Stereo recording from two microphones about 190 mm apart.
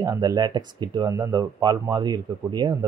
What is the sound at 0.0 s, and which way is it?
Speech, 20° right (ahead or behind).